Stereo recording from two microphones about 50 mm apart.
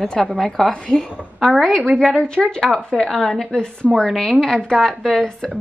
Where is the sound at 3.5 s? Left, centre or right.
Left.